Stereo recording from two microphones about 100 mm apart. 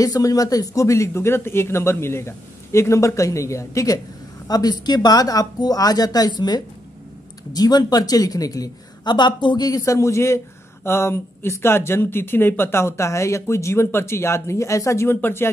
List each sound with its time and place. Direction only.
0.0 s speech: 40° left (ahead or behind); by 15.5 s 20° left (ahead or behind)